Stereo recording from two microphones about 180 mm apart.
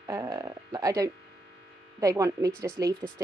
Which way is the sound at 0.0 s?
20° right (ahead or behind).